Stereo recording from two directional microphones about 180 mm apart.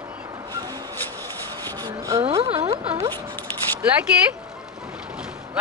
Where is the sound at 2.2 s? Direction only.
30° right (ahead or behind).